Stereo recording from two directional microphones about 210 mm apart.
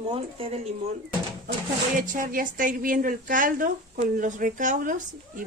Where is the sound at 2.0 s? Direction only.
40° right (ahead or behind).